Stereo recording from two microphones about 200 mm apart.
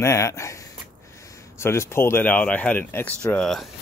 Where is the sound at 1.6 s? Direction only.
15° left (ahead or behind).